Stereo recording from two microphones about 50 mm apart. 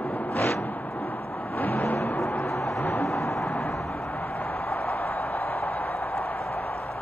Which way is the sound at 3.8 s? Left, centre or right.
Left.